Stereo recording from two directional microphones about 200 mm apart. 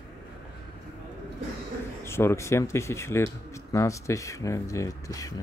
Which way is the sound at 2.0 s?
10° left (ahead or behind).